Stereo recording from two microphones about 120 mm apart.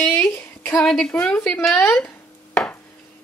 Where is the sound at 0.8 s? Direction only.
5° left (ahead or behind).